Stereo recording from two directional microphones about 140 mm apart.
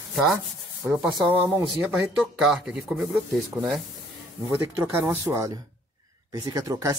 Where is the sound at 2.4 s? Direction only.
5° right (ahead or behind).